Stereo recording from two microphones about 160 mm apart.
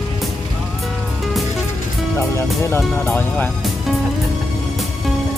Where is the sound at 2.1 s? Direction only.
15° left (ahead or behind).